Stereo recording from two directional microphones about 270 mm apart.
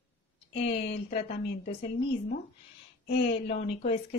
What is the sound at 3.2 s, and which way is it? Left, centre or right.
Speech, left.